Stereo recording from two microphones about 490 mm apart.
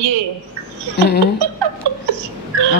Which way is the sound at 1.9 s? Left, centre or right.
Right.